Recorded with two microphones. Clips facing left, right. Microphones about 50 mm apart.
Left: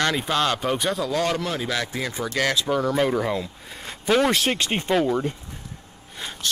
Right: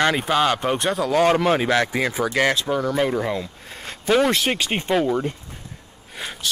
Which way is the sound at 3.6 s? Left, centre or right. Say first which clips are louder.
Right 2 dB; centre.